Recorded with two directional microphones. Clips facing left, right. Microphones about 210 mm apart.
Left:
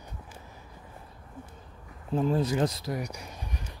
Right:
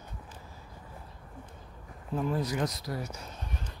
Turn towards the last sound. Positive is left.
turn(degrees=15)  # may be behind; listen again after turning